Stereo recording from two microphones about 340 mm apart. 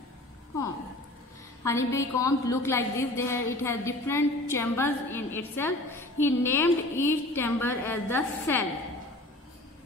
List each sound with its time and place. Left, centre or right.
1.6 s a woman's voice: centre